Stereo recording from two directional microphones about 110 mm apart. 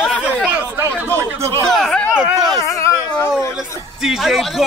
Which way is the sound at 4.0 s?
5° right (ahead or behind).